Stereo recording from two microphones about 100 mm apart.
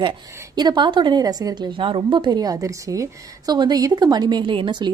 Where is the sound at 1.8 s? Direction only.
55° right (ahead or behind).